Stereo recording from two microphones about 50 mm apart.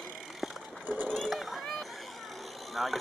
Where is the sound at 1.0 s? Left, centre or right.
Centre.